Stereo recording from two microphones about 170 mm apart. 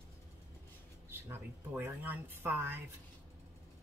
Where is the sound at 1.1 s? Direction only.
15° right (ahead or behind).